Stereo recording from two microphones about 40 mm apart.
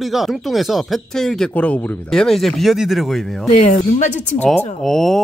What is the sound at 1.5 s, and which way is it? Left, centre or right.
Speech, left.